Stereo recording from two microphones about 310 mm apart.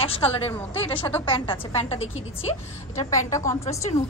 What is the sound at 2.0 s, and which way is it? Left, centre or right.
Speech, left.